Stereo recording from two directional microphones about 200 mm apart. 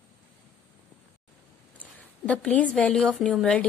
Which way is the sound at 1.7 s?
5° left (ahead or behind).